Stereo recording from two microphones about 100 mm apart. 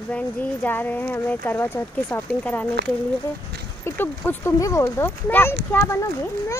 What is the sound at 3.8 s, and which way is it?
Speech, 20° left (ahead or behind).